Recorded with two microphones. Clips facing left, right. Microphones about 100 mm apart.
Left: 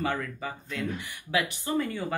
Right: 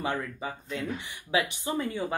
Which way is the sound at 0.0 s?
20° right (ahead or behind).